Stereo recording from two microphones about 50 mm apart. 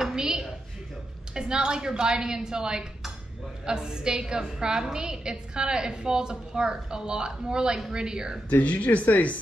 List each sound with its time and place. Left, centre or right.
0.0 s a sound: centre
1.3 s a woman's voice: centre
8.5 s speech: left